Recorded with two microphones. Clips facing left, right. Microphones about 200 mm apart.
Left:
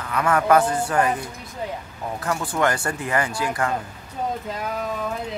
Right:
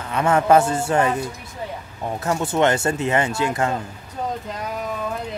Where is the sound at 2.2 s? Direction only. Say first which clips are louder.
Right 4 dB; 25° right (ahead or behind).